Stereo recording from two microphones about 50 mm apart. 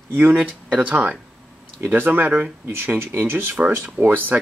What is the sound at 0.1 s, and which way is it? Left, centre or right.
Speech, right.